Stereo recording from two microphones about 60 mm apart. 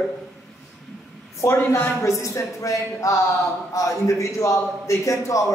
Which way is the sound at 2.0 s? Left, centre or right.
Left.